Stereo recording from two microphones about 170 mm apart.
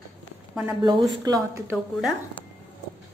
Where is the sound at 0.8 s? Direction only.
20° right (ahead or behind).